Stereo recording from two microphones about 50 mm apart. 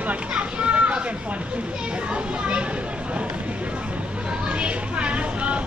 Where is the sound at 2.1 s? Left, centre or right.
Right.